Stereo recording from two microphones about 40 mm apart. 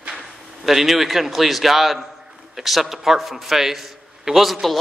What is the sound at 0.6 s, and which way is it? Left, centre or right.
A man's voice, centre.